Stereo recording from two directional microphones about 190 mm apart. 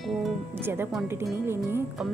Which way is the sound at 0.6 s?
10° right (ahead or behind).